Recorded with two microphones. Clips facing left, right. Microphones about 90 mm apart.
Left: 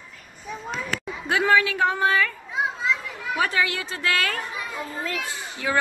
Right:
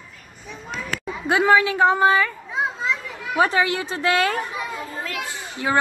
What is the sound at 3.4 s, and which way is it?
A woman's voice, 30° right (ahead or behind).